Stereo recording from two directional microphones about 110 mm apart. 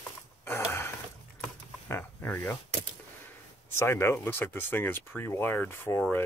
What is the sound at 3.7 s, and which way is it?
Speech, 25° left (ahead or behind).